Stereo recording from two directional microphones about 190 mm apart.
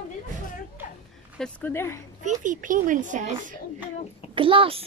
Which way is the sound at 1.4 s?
10° left (ahead or behind).